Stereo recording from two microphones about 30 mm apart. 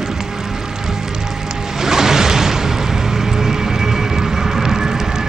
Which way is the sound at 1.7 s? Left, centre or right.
Centre.